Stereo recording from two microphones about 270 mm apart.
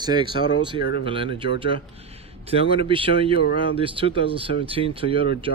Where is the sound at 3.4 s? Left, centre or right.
Left.